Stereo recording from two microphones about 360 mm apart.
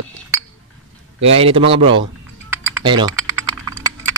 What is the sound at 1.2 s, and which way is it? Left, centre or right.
Speech, centre.